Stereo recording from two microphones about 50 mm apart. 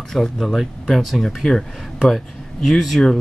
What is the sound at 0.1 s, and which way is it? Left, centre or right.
Speech, centre.